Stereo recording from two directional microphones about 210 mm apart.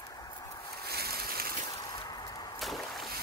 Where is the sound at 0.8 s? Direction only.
50° right (ahead or behind).